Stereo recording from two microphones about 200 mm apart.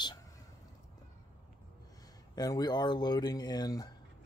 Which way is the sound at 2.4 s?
20° left (ahead or behind).